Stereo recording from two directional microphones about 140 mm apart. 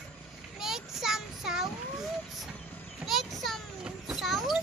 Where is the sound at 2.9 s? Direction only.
Centre (ahead or behind).